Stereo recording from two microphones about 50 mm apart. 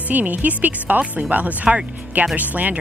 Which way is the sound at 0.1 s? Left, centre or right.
Right.